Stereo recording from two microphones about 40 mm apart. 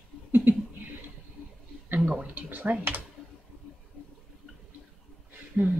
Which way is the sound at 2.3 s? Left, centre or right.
Right.